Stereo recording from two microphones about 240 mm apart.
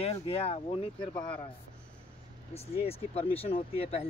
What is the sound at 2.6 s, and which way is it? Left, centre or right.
Speech, left.